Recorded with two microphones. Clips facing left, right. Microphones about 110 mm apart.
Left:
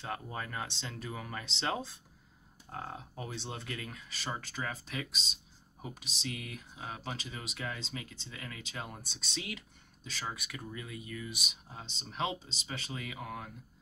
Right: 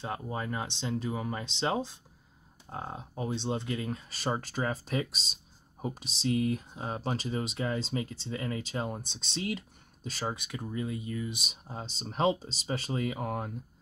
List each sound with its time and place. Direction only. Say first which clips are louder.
0.0 s speech: right 4 dB; 20° right (ahead or behind); by 10.3 s 40° right (ahead or behind)
10.3 s speech: right 7 dB; 25° right (ahead or behind); by 13.5 s 40° right (ahead or behind)